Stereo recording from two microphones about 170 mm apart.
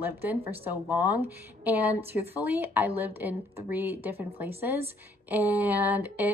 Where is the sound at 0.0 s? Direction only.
10° right (ahead or behind).